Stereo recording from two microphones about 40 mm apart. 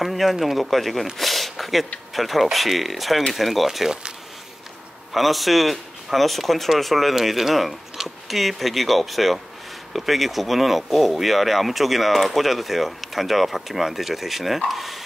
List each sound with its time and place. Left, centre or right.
0.0 s speech: centre
5.1 s speech: centre